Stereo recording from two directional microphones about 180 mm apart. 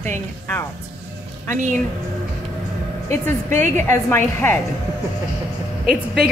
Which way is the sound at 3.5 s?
15° left (ahead or behind).